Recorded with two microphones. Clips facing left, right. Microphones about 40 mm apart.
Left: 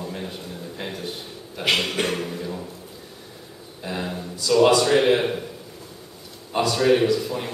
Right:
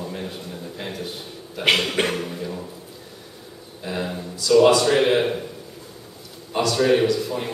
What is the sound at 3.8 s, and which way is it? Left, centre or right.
A man's voice, centre.